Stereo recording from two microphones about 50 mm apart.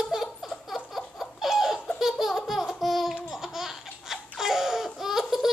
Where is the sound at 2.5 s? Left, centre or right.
Centre.